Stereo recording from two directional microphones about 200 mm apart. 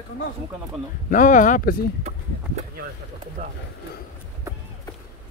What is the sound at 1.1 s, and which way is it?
Speech, 40° left (ahead or behind).